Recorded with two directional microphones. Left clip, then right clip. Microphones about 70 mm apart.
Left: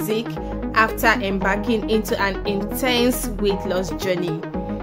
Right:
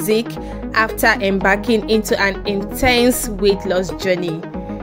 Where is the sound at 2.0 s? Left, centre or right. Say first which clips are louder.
Right 4 dB; right.